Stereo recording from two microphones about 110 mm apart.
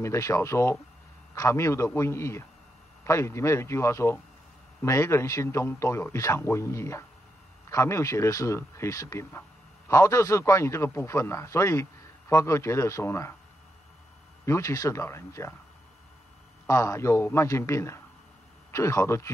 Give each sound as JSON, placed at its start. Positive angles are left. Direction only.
{"t": 0.0, "sound": "a man's voice", "side_deg": 25}
{"t": 14.4, "sound": "a man's voice", "side_deg": 25}
{"t": 16.6, "sound": "a man's voice", "side_deg": 30}